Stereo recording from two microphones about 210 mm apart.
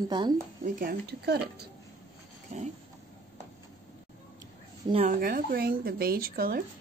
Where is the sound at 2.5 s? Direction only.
35° right (ahead or behind).